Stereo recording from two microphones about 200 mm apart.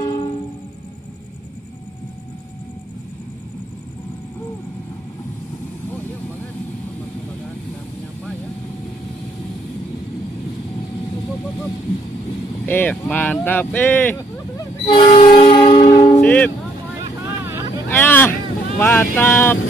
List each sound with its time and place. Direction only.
0.0 s music: 25° left (ahead or behind)
12.6 s speech: 10° left (ahead or behind); by 16.1 s 25° left (ahead or behind)
16.2 s speech: 10° left (ahead or behind)
17.8 s hubbub: 10° left (ahead or behind)
18.8 s vehicle: 10° left (ahead or behind)